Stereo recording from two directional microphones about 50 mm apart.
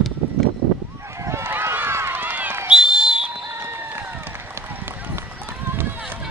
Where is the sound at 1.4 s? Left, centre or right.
Right.